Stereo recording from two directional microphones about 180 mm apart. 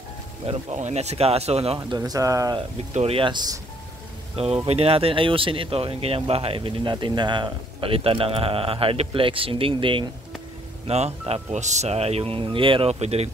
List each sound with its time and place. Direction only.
0.5 s speech: 40° right (ahead or behind)
1.8 s speech: 20° right (ahead or behind)
2.9 s speech: 35° right (ahead or behind)
4.6 s speech: 35° right (ahead or behind)